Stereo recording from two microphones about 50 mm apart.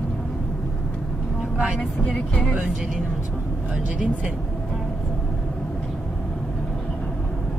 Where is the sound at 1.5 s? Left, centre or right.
Right.